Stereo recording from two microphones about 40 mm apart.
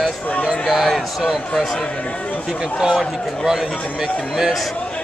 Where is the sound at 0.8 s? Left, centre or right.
Centre.